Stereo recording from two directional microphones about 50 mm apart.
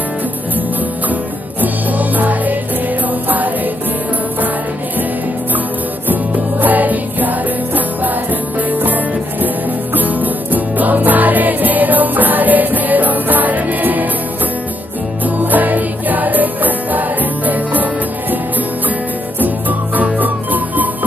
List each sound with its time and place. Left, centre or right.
1.6 s music: right
6.0 s music: right
15.2 s music: right
19.4 s music: right